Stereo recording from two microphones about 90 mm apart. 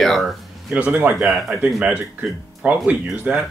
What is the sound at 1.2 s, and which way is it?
Speech, 5° right (ahead or behind).